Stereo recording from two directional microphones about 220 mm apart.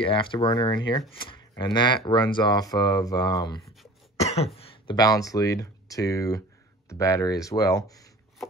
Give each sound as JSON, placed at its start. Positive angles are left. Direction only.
{"t": 0.0, "sound": "speech", "side_deg": 25}
{"t": 4.2, "sound": "throat clearing", "side_deg": 30}
{"t": 4.6, "sound": "speech", "side_deg": 25}